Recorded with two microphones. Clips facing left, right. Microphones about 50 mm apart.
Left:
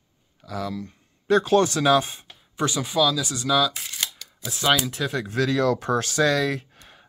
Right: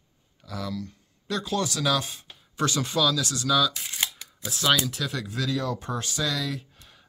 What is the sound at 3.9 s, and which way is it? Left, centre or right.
Camera, centre.